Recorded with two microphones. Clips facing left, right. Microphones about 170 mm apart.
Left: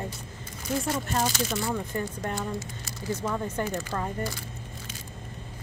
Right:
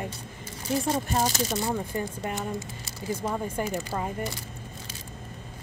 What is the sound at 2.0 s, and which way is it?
Speech, 10° right (ahead or behind).